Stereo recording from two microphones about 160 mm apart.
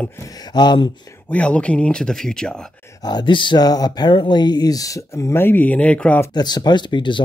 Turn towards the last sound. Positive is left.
turn(degrees=30)  # may be behind; listen again after turning